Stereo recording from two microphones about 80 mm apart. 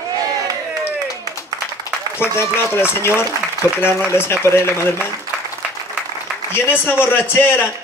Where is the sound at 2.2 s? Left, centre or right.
Left.